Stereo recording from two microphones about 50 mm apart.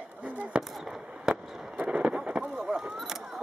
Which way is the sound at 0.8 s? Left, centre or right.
Centre.